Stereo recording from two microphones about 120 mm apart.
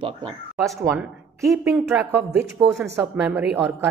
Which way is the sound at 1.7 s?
10° right (ahead or behind).